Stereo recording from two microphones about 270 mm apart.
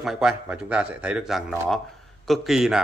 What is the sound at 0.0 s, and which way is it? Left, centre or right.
Speech, centre.